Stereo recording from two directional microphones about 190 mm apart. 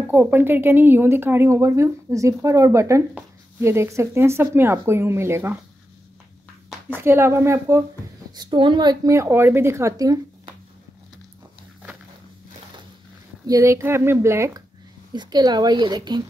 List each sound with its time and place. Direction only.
0.1 s speech: 10° right (ahead or behind)
7.0 s a woman's voice: 10° right (ahead or behind)
13.5 s a woman's voice: 15° right (ahead or behind)